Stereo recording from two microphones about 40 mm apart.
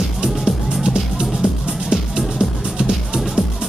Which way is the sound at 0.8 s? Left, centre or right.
Centre.